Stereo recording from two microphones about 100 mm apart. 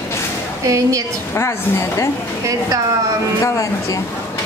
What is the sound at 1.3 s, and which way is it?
Speech, 25° left (ahead or behind).